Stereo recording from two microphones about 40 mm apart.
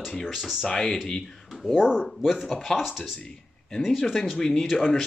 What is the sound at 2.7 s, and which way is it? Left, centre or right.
Speech, centre.